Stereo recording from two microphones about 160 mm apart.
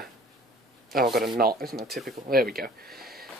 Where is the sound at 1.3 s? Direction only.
70° right (ahead or behind).